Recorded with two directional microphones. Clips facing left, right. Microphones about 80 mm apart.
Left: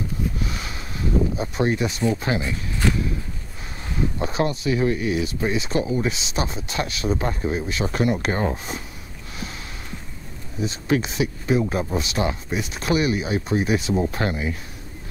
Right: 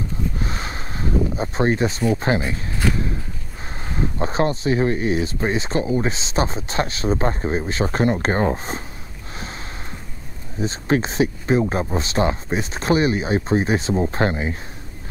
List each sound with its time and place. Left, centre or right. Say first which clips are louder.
0.4 s a sound: right 2 dB; right
2.1 s speech: right 4 dB; right
3.8 s speech: right 1 dB; right
10.6 s speech: right 2 dB; right